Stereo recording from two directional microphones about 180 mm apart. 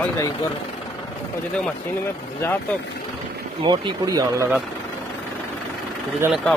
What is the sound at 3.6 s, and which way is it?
Speech, 25° right (ahead or behind).